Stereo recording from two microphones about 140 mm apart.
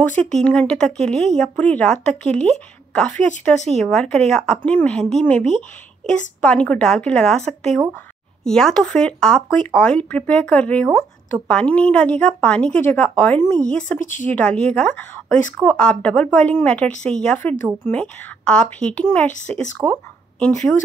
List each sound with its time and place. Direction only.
0.3 s a woman's voice: 5° left (ahead or behind)
19.8 s speech: 20° right (ahead or behind)
20.3 s speech: 5° left (ahead or behind)